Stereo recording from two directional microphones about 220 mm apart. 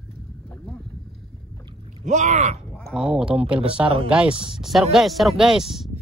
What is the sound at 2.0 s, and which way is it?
Speech, 35° right (ahead or behind).